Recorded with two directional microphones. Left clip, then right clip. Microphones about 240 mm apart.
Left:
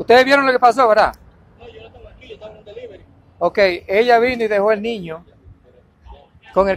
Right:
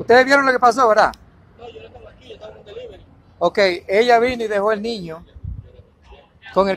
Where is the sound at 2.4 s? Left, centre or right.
Centre.